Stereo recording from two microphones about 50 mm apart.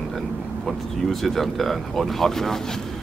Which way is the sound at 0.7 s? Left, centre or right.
Centre.